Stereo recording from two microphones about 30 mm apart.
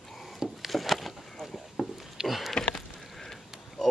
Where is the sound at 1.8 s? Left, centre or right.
Centre.